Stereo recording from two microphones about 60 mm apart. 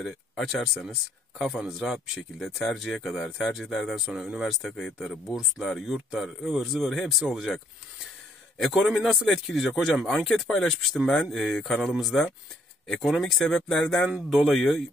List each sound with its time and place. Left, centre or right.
0.0 s speech: centre
4.0 s speech: centre
8.5 s speech: centre